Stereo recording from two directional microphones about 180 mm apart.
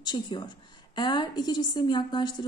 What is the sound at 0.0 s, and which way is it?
A woman's voice, 25° left (ahead or behind).